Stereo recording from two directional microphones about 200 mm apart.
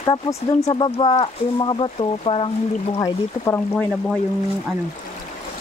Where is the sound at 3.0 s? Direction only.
15° left (ahead or behind).